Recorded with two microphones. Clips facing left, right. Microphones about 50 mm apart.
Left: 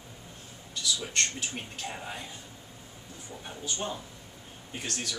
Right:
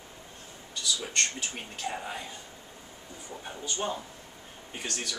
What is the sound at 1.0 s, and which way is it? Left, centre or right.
Speech, centre.